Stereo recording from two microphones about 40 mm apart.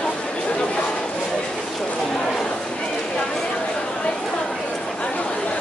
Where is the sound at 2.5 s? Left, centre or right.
Left.